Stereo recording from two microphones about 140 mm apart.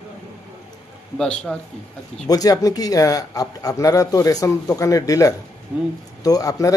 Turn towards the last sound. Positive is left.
turn(degrees=25)  # may be behind; listen again after turning